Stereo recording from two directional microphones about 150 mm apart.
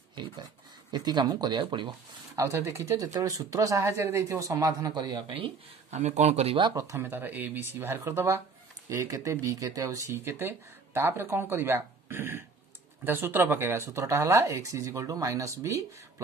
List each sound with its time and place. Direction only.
0.2 s pig: 30° right (ahead or behind)
0.9 s speech: 30° right (ahead or behind)
5.9 s speech: 50° right (ahead or behind)
6.6 s speech: 25° right (ahead or behind)